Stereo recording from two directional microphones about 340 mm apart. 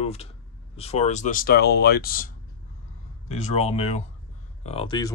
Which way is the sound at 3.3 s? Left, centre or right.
Centre.